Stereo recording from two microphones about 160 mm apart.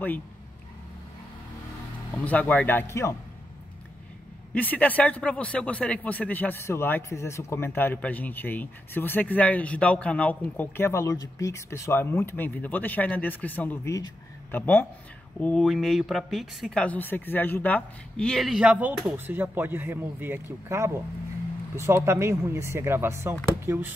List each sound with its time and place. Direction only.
2.2 s a man's voice: 10° left (ahead or behind)
4.6 s a man's voice: 10° left (ahead or behind); by 23.9 s 15° right (ahead or behind)